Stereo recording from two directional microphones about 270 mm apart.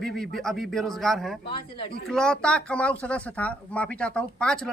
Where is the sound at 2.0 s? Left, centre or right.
Centre.